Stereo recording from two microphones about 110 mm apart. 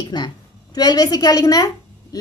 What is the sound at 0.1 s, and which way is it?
A woman's voice, 40° left (ahead or behind).